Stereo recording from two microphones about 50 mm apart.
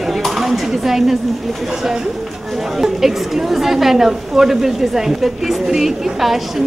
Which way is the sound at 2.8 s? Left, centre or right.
Centre.